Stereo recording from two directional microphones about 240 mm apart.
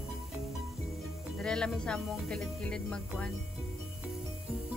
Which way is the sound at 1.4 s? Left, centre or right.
Centre.